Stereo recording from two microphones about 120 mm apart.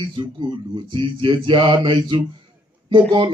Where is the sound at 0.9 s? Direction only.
45° right (ahead or behind).